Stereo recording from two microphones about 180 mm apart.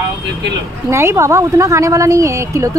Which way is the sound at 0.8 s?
15° right (ahead or behind).